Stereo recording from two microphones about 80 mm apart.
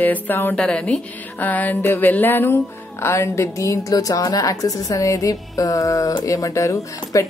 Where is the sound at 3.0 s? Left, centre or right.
Left.